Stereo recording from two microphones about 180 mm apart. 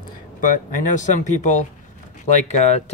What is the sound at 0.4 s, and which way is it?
Speech, 45° left (ahead or behind).